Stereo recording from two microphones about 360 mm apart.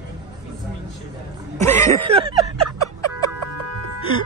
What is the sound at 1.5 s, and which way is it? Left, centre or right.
Speech, centre.